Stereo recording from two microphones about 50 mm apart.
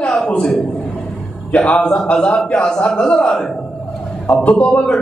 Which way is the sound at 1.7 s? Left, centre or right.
Left.